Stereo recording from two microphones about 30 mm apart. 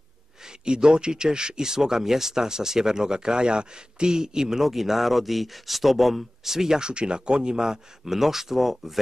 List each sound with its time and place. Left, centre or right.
0.4 s speech: right
4.6 s speech: centre
6.8 s speech: right
8.0 s speech: centre